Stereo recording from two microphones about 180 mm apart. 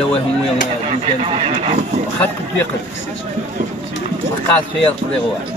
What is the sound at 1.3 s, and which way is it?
Speech, 35° right (ahead or behind).